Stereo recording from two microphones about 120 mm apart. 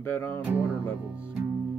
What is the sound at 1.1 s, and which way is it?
Speech, 10° right (ahead or behind).